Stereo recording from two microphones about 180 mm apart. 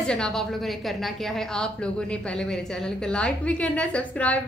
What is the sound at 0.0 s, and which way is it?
A woman's voice, 5° left (ahead or behind).